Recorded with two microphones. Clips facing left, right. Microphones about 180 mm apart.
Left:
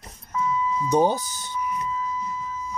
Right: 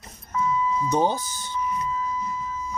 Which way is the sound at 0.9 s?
15° left (ahead or behind).